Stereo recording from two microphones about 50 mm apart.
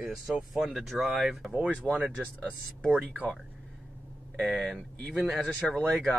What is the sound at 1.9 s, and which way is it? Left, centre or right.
Speech, left.